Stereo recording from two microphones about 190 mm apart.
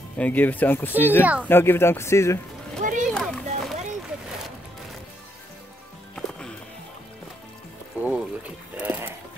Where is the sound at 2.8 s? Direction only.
45° right (ahead or behind).